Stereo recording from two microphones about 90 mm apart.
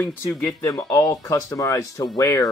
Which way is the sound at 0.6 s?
35° left (ahead or behind).